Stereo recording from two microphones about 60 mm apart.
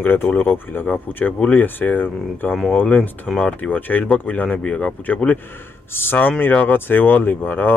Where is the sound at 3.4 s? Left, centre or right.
Left.